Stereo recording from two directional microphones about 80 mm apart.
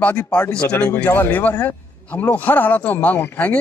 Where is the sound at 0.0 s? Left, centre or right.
Centre.